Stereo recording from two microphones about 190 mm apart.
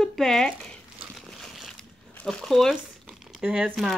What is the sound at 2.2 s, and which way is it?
Speech, centre (ahead or behind).